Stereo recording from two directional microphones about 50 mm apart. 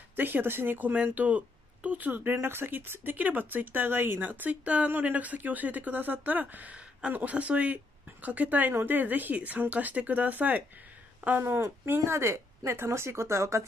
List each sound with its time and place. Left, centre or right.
0.1 s speech: right
4.3 s speech: right
11.4 s speech: right